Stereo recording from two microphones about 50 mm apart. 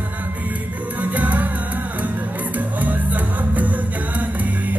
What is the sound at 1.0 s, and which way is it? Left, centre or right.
Music, right.